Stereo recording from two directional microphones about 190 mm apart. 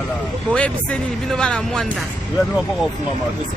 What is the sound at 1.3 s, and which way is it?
Speech, 5° left (ahead or behind).